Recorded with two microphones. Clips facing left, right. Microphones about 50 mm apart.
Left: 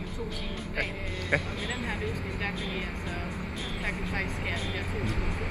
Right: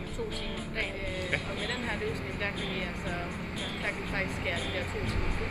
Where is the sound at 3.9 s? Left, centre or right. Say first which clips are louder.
Even; centre.